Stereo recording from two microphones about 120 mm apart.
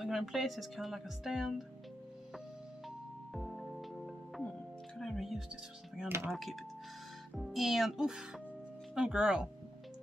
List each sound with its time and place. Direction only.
0.0 s speech: centre (ahead or behind)
3.3 s music: centre (ahead or behind)
6.0 s speech: 20° right (ahead or behind)
6.3 s speech: centre (ahead or behind)